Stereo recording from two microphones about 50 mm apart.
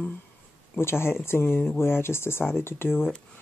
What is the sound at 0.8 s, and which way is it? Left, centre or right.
A woman's voice, left.